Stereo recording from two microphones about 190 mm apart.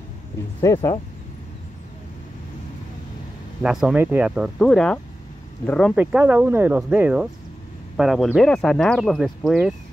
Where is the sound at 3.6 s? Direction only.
5° right (ahead or behind).